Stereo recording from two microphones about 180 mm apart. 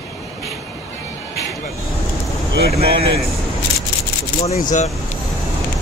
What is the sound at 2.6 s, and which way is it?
Speech, 35° right (ahead or behind).